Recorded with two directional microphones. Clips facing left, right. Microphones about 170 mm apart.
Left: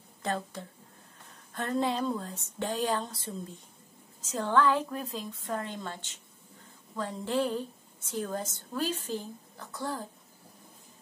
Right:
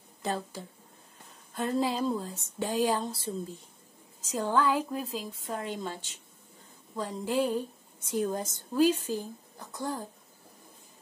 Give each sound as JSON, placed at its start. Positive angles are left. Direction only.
{"t": 0.2, "sound": "a woman's voice", "side_deg": -5}
{"t": 4.3, "sound": "a woman's voice", "side_deg": -10}